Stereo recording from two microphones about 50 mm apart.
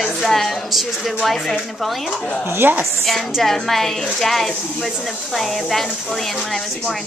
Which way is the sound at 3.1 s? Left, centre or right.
Centre.